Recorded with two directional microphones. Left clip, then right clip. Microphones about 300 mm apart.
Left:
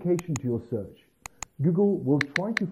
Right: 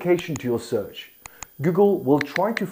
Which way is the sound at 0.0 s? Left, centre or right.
Centre.